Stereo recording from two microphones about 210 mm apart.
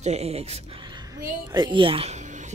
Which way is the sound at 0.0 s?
30° right (ahead or behind).